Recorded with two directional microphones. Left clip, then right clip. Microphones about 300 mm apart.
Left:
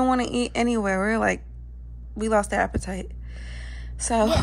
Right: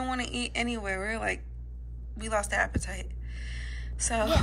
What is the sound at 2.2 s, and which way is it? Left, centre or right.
A woman's voice, left.